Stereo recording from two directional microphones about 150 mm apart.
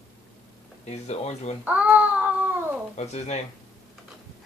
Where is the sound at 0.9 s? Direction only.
45° left (ahead or behind).